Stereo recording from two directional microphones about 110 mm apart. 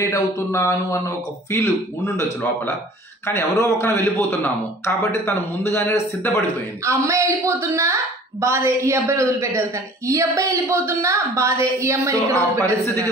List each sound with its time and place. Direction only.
0.0 s speech: 25° left (ahead or behind)
3.3 s speech: 20° left (ahead or behind)
6.8 s a woman's voice: 25° right (ahead or behind)